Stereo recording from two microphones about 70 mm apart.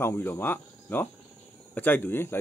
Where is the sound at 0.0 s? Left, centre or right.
Left.